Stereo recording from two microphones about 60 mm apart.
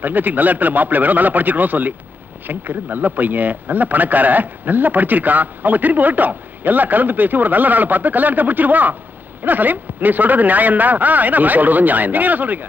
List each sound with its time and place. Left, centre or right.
0.0 s a man's voice: right